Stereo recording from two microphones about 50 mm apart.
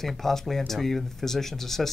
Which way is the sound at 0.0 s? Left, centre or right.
Centre.